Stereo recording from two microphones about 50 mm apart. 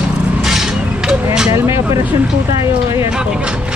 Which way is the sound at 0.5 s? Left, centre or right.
Centre.